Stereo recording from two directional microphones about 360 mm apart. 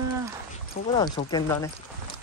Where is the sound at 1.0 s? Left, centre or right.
Centre.